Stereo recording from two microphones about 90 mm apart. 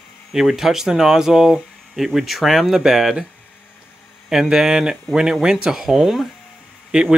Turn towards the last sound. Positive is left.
turn(degrees=-10)  # may be behind; listen again after turning